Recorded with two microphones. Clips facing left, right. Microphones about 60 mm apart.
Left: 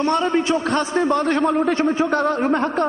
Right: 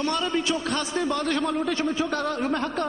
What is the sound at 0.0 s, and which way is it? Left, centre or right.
A man's voice, left.